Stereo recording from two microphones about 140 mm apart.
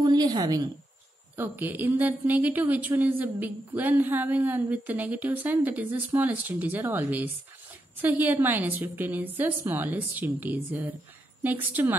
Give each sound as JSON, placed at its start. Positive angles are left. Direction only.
{"t": 0.0, "sound": "a woman's voice", "side_deg": -30}
{"t": 1.3, "sound": "speech", "side_deg": -15}